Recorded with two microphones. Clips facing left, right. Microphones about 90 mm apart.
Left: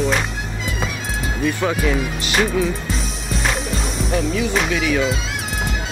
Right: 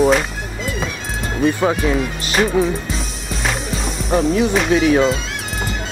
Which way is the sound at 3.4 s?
Centre (ahead or behind).